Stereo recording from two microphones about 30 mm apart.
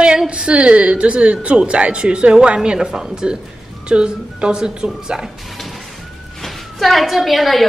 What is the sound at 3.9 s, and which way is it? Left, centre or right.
A woman's voice, right.